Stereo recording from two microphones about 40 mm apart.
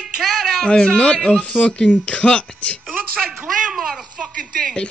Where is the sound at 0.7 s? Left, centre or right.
Left.